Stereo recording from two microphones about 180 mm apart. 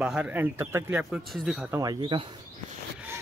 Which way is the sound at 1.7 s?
20° right (ahead or behind).